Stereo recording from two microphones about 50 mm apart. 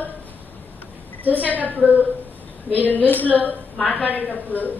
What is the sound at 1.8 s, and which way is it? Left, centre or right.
Speech, left.